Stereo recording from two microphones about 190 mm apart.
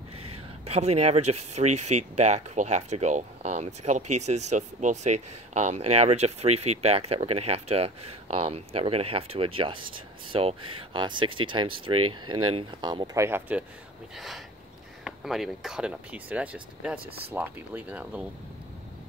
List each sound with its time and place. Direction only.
0.7 s speech: 35° right (ahead or behind); by 18.2 s 5° right (ahead or behind)